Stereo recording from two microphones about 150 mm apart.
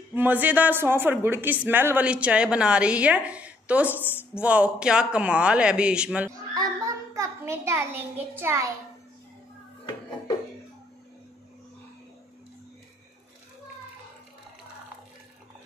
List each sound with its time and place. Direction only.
0.1 s a woman's voice: 10° right (ahead or behind)
6.2 s a child's voice: 25° right (ahead or behind)